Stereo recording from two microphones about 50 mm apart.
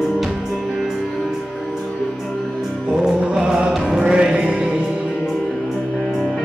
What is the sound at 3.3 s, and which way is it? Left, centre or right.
Music, centre.